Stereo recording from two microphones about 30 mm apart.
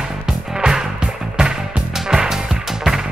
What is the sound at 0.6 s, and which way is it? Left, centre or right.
Music, centre.